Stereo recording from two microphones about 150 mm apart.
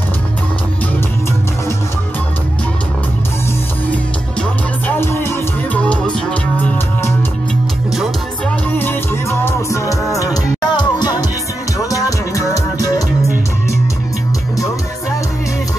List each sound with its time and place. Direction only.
3.9 s music: 10° left (ahead or behind)
9.4 s music: 20° left (ahead or behind)